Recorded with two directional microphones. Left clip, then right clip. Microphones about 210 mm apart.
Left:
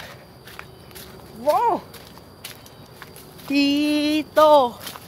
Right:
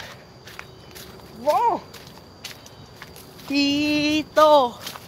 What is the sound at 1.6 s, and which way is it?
Speech, 20° left (ahead or behind).